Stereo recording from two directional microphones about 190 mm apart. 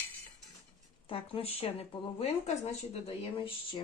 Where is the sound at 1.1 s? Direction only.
30° left (ahead or behind).